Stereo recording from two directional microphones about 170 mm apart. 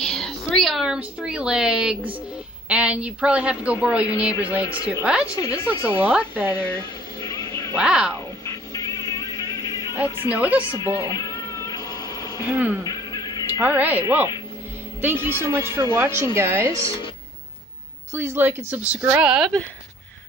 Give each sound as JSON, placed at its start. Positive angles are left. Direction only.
{"t": 0.0, "sound": "a woman's voice", "side_deg": 5}
{"t": 5.2, "sound": "speech", "side_deg": 20}
{"t": 5.9, "sound": "a woman's voice", "side_deg": -10}
{"t": 7.2, "sound": "a sound", "side_deg": 20}
{"t": 7.7, "sound": "speech", "side_deg": -5}
{"t": 8.5, "sound": "music", "side_deg": 20}
{"t": 10.2, "sound": "a woman's voice", "side_deg": -10}
{"t": 11.1, "sound": "cat", "side_deg": 20}
{"t": 12.4, "sound": "a woman's voice", "side_deg": -10}
{"t": 12.8, "sound": "music", "side_deg": 25}
{"t": 13.6, "sound": "a woman's voice", "side_deg": -10}
{"t": 18.1, "sound": "a woman's voice", "side_deg": -15}